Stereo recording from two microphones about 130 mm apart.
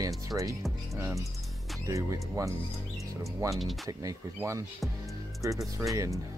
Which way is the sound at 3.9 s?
25° right (ahead or behind).